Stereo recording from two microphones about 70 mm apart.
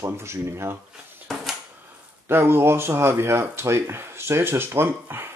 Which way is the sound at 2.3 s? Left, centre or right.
Right.